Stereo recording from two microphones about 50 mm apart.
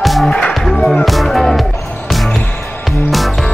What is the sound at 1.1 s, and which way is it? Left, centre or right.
Music, centre.